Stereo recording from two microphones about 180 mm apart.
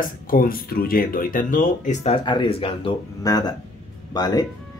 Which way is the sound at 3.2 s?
20° left (ahead or behind).